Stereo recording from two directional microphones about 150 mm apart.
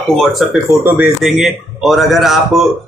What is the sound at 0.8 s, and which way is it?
Speech, 15° right (ahead or behind).